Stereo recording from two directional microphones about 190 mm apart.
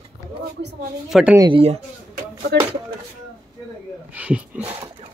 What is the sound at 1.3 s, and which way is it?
Speech, 25° right (ahead or behind).